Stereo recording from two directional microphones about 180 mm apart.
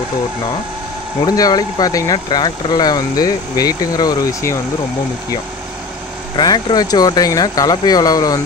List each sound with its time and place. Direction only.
1.2 s speech: 20° left (ahead or behind)
6.3 s speech: 20° left (ahead or behind)